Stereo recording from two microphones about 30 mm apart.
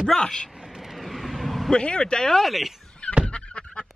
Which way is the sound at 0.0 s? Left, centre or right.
Centre.